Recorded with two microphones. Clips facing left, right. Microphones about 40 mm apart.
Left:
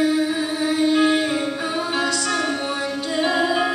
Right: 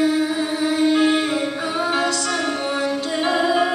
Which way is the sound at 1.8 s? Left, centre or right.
Centre.